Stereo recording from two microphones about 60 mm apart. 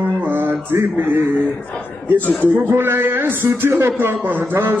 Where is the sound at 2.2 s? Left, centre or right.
Left.